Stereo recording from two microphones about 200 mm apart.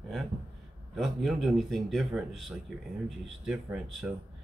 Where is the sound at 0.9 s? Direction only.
Centre (ahead or behind).